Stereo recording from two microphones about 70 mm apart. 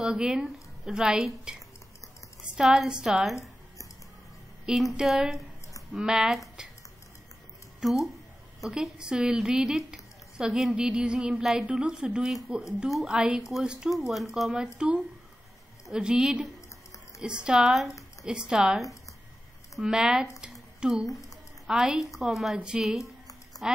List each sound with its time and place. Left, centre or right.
0.0 s a woman's voice: centre
4.6 s a woman's voice: centre
7.8 s a woman's voice: centre
15.9 s a woman's voice: centre
21.0 s speech: left
21.6 s a woman's voice: centre